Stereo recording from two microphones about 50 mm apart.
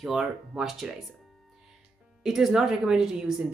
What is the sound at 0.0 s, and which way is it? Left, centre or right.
Speech, centre.